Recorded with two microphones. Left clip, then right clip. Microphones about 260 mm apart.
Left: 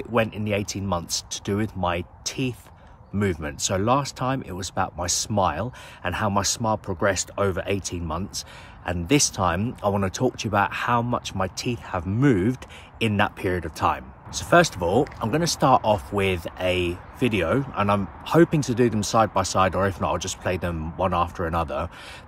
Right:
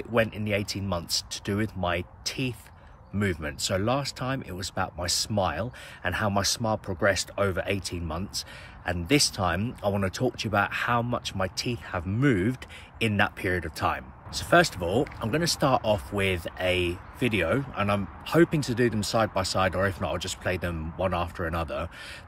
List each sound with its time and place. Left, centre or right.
0.1 s speech: centre